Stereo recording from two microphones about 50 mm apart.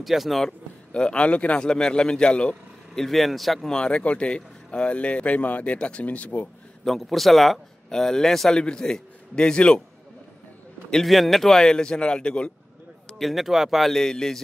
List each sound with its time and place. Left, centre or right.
0.0 s speech: centre
0.5 s a man's voice: centre
1.6 s a man's voice: centre
3.0 s speech: centre
3.6 s speech: centre
6.8 s a man's voice: centre
10.9 s a man's voice: centre
13.2 s speech: centre